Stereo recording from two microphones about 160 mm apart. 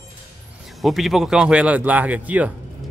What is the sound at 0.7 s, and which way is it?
Speech, centre (ahead or behind).